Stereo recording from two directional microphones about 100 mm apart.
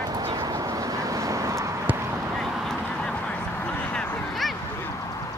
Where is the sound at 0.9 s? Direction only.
35° right (ahead or behind).